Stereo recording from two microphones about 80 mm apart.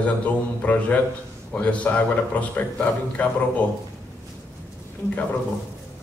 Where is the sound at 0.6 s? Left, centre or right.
Centre.